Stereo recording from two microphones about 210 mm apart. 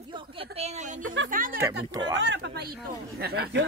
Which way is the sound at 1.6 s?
20° right (ahead or behind).